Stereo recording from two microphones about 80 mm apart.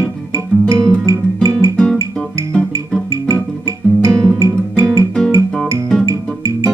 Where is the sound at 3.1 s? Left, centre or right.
Right.